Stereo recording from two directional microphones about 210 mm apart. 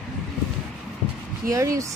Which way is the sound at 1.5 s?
15° right (ahead or behind).